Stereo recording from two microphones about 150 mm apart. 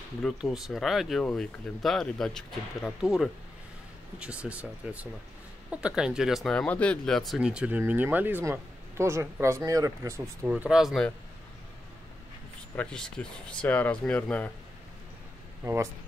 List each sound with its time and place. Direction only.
0.2 s speech: centre (ahead or behind); by 10.5 s 20° right (ahead or behind)
10.5 s speech: 5° right (ahead or behind)
12.7 s speech: 5° left (ahead or behind)
15.6 s speech: 20° right (ahead or behind)